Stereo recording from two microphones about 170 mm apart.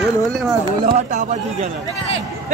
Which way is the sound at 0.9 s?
45° right (ahead or behind).